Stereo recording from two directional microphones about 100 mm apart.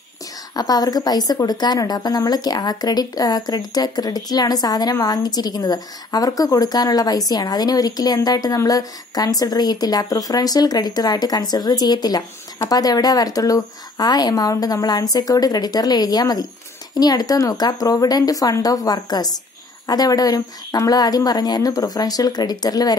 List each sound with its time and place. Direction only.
0.6 s a woman's voice: 40° left (ahead or behind)